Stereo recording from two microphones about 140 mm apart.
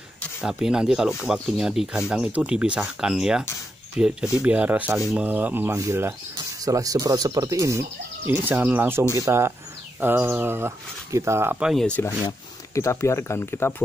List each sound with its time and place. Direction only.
0.4 s speech: 5° right (ahead or behind)
11.6 s speech: centre (ahead or behind)
12.3 s speech: 20° left (ahead or behind)